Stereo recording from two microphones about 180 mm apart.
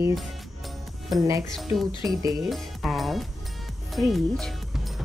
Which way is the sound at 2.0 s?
20° right (ahead or behind).